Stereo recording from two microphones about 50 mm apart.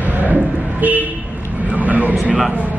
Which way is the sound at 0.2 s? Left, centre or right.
Right.